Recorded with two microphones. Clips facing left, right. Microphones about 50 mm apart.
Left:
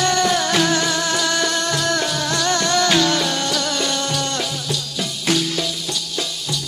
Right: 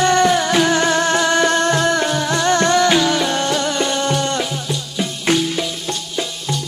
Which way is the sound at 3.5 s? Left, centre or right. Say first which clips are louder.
Right 3 dB; right.